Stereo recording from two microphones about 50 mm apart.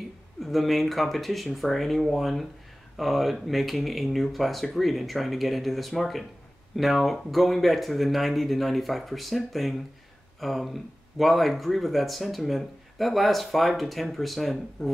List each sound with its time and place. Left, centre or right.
0.4 s speech: centre